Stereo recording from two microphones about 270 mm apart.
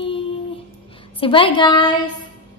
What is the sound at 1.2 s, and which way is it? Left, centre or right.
Speech, centre.